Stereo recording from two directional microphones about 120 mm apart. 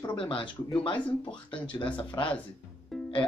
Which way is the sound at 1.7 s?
45° left (ahead or behind).